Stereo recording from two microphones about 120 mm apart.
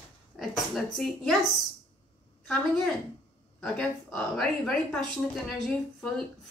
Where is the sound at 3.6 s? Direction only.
5° left (ahead or behind).